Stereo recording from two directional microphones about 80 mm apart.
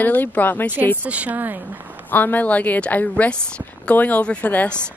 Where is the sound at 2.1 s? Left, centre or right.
Left.